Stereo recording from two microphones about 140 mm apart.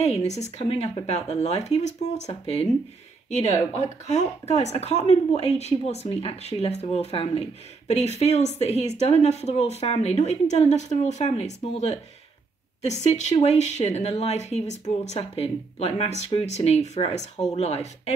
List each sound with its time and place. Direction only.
0.0 s speech: 50° left (ahead or behind)